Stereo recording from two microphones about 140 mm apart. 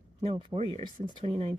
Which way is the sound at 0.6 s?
50° right (ahead or behind).